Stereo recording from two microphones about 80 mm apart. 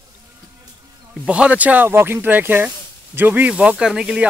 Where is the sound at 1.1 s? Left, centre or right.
Centre.